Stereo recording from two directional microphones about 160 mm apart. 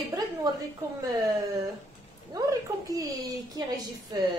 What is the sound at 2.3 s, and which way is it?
A woman's voice, 20° right (ahead or behind).